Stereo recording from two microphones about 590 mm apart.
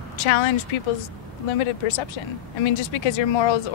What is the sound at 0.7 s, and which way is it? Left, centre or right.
Speech, left.